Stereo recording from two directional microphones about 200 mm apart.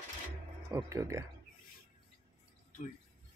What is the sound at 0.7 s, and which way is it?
Speech, 15° right (ahead or behind).